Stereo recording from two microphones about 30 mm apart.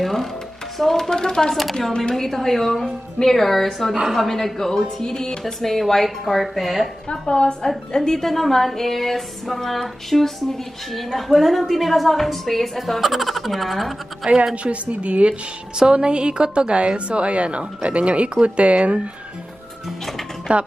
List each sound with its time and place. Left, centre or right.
0.0 s a sound: centre
1.1 s a woman's voice: left
1.5 s a woman's voice: centre
2.1 s a sound: centre
5.0 s a woman's voice: left
5.4 s a sound: centre
6.0 s a woman's voice: centre
7.1 s a woman's voice: left
8.3 s a sound: centre
11.1 s a woman's voice: centre
14.2 s a woman's voice: right
14.5 s a woman's voice: right
15.9 s a woman's voice: right
20.5 s a woman's voice: right